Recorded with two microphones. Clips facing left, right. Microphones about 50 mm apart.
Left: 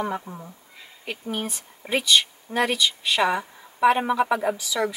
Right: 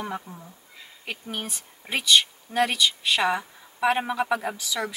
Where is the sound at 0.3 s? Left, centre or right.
Left.